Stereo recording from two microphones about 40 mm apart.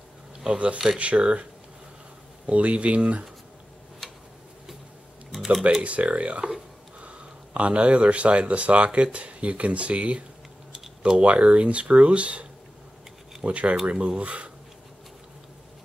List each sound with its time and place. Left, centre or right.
0.5 s speech: right
5.3 s typing: centre
5.8 s speech: right
10.7 s typing: centre
11.2 s speech: right